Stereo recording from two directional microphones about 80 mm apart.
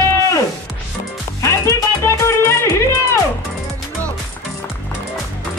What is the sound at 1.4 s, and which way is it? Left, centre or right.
Music, left.